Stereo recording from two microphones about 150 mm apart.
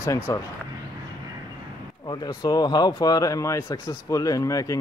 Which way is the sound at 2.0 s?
30° left (ahead or behind).